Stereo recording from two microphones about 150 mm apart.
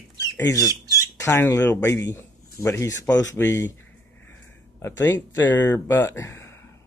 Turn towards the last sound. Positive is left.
turn(degrees=15)  # may be behind; listen again after turning